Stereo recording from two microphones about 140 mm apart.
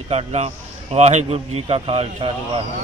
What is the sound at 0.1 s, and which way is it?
A man's voice, 45° right (ahead or behind).